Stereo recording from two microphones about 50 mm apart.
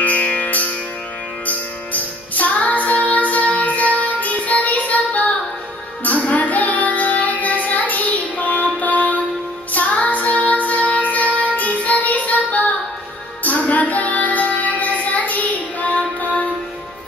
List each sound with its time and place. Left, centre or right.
0.0 s music: left
6.0 s child singing: left
9.7 s music: left
13.4 s child singing: left